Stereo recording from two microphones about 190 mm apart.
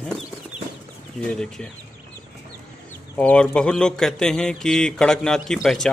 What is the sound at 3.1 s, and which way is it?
A man's voice, 5° left (ahead or behind).